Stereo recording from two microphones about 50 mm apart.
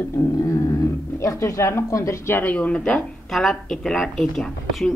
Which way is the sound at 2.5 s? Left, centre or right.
Left.